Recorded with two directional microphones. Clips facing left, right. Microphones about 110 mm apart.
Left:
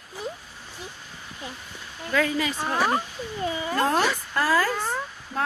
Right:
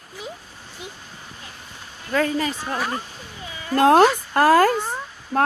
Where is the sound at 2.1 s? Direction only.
40° right (ahead or behind).